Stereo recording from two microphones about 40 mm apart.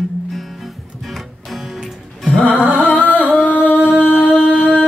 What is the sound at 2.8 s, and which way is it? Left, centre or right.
Singing, left.